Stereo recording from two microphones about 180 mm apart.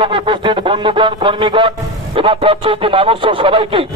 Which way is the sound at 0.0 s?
25° right (ahead or behind).